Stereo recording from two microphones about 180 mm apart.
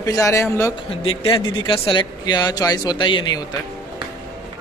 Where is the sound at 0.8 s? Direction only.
30° left (ahead or behind).